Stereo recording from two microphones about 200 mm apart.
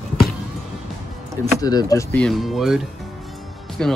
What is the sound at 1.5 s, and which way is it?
Speech, 20° left (ahead or behind).